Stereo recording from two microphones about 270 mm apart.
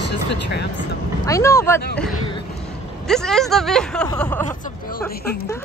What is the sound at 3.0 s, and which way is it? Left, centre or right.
Speech, centre.